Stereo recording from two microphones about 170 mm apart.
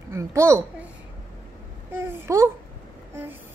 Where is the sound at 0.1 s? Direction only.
15° right (ahead or behind).